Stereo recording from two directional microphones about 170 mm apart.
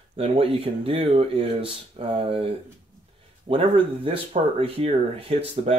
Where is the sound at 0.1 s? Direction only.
35° right (ahead or behind).